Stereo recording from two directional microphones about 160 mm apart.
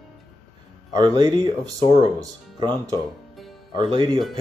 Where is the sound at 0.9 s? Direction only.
25° right (ahead or behind).